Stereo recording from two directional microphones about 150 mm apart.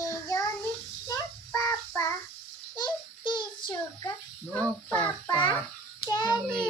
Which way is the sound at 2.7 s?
30° left (ahead or behind).